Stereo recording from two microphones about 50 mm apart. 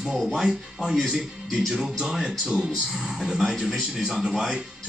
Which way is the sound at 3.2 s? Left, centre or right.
Centre.